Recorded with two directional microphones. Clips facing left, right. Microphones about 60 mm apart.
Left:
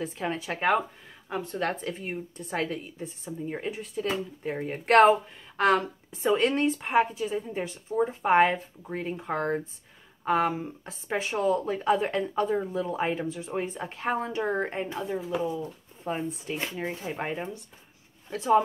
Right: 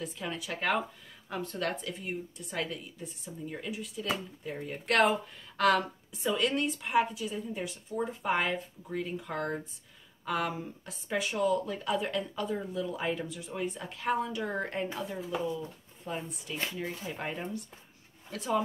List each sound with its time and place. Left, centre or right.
0.0 s speech: left
1.7 s speech: left
4.4 s speech: left
15.1 s speech: centre
16.0 s speech: left